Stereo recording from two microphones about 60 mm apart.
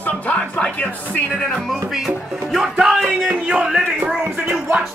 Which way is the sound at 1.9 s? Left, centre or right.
Centre.